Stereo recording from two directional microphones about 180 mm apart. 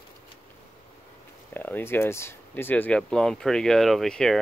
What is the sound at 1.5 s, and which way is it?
Speech, 10° left (ahead or behind).